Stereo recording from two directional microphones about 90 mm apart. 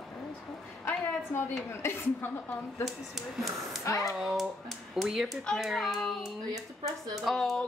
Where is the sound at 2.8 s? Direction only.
Centre (ahead or behind).